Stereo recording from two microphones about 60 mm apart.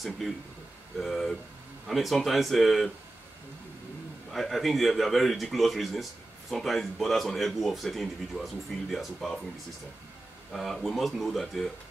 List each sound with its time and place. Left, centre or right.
0.2 s speech: centre
4.3 s speech: centre
10.5 s speech: centre